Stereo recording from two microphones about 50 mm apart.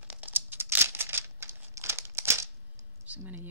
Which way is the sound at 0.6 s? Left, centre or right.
Right.